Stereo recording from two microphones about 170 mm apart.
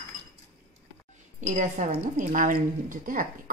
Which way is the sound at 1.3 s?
45° right (ahead or behind).